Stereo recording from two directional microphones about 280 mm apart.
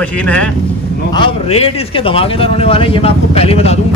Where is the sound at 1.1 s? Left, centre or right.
Centre.